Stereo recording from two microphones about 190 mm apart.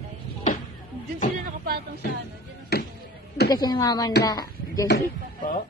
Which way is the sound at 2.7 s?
55° left (ahead or behind).